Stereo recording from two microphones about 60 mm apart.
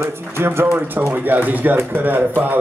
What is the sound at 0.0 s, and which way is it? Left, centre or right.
A man's voice, right.